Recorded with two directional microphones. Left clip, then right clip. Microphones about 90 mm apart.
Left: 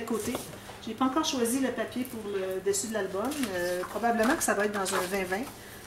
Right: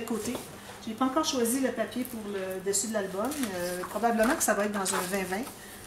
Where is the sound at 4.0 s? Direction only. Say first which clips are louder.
Right 1 dB; 10° right (ahead or behind).